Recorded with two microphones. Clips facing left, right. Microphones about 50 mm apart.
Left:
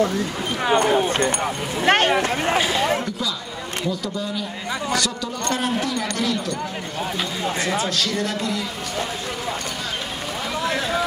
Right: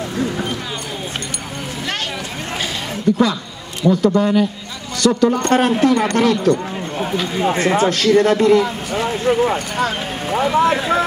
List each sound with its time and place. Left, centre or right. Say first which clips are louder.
0.7 s speech: left 9 dB; left
3.1 s a man's voice: right 14 dB; right
4.1 s a man's voice: right 12 dB; right
7.3 s a man's voice: right 9 dB; right